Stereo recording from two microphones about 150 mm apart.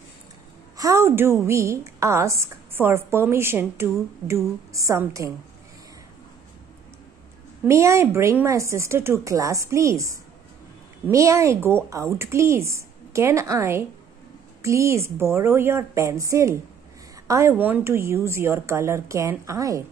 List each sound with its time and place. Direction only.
0.7 s a woman's voice: 20° right (ahead or behind)
7.6 s a woman's voice: 20° right (ahead or behind)